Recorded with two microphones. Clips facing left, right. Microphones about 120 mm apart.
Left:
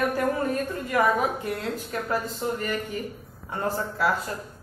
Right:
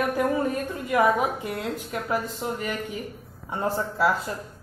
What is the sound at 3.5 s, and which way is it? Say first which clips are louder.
Speech: right 1 dB; 20° right (ahead or behind).